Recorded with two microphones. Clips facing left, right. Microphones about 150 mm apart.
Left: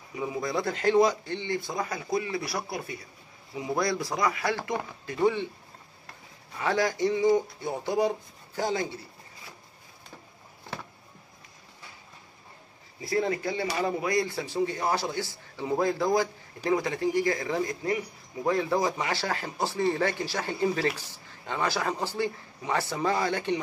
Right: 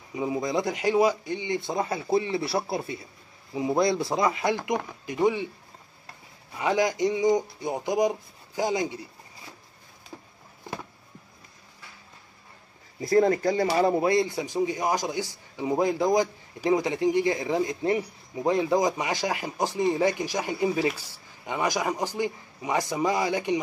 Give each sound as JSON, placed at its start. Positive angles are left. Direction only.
{"t": 0.1, "sound": "speech", "side_deg": -20}
{"t": 1.6, "sound": "speech", "side_deg": -25}
{"t": 6.6, "sound": "speech", "side_deg": -15}
{"t": 13.0, "sound": "speech", "side_deg": -45}